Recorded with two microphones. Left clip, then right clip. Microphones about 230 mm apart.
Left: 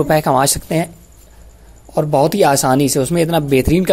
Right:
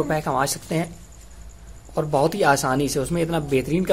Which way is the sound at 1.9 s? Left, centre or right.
Left.